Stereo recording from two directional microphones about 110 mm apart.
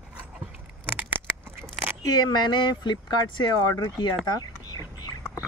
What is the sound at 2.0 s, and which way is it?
Speech, 35° left (ahead or behind).